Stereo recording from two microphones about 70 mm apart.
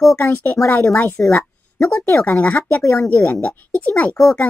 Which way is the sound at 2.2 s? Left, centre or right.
Left.